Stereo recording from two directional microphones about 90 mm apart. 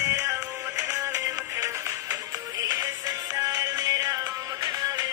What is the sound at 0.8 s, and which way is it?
Music, 35° right (ahead or behind).